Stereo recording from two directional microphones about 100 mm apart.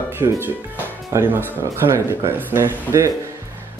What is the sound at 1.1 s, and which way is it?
Speech, 25° right (ahead or behind).